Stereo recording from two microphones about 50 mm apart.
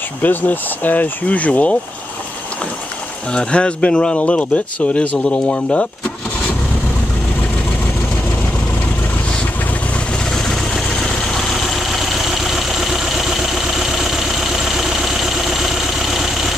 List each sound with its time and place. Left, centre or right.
0.2 s speech: left
3.3 s speech: centre
10.1 s vehicle: centre